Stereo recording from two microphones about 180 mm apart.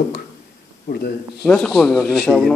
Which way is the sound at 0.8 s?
60° left (ahead or behind).